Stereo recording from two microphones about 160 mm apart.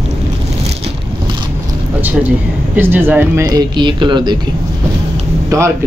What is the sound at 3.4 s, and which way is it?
Speech, 25° right (ahead or behind).